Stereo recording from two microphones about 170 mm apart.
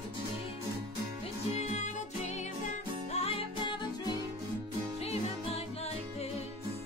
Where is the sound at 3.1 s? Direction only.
35° left (ahead or behind).